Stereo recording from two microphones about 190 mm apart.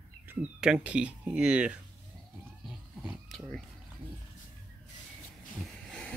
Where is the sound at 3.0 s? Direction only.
Centre (ahead or behind).